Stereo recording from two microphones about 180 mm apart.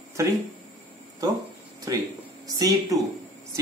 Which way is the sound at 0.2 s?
15° right (ahead or behind).